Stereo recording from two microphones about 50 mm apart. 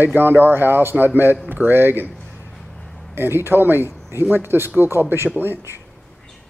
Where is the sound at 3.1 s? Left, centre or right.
Right.